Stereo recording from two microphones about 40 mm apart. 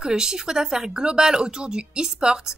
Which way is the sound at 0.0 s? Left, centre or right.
Centre.